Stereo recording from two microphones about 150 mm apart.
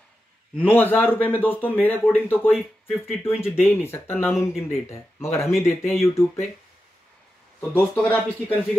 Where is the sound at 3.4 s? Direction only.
15° left (ahead or behind).